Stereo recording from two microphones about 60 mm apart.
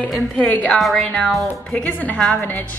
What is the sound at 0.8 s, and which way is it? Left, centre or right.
Speech, centre.